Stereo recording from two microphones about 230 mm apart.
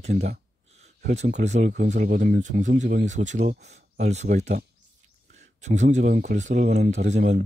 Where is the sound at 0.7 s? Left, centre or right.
Right.